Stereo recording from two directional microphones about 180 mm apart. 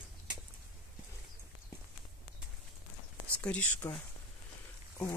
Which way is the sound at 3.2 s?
5° left (ahead or behind).